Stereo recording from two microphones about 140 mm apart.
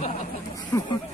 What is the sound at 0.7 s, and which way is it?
Speech, 20° left (ahead or behind).